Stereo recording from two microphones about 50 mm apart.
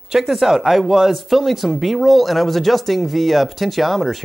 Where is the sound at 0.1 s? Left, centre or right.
Centre.